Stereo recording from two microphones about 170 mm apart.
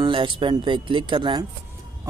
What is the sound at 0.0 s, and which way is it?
Speech, 30° right (ahead or behind).